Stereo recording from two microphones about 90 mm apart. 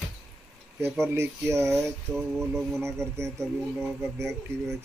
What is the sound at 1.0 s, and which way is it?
Speech, 30° right (ahead or behind).